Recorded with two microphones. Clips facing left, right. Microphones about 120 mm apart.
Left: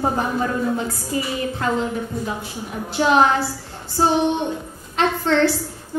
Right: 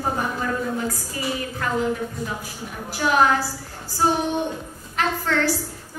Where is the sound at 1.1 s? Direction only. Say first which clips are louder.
Left 6 dB; 25° left (ahead or behind).